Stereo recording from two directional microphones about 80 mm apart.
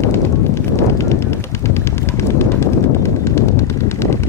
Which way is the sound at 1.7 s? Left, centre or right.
Left.